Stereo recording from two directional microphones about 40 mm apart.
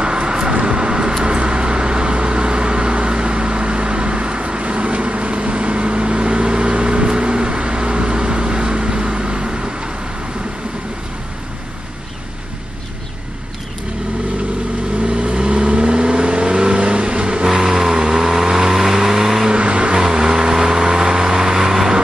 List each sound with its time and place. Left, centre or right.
0.0 s vehicle: right
15.0 s vehicle: right
17.5 s vehicle: centre
19.5 s vehicle: right
20.0 s vehicle: centre